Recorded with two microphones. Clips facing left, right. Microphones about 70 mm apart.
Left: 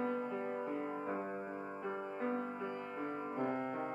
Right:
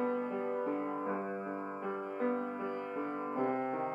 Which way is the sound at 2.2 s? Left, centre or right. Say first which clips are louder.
Right 5 dB; right.